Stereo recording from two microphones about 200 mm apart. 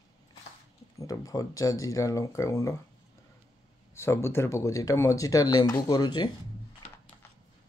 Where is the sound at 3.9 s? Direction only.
10° left (ahead or behind).